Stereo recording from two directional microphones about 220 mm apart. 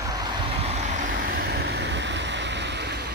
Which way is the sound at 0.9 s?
35° right (ahead or behind).